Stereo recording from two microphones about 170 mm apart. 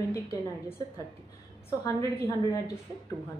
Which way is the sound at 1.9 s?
20° left (ahead or behind).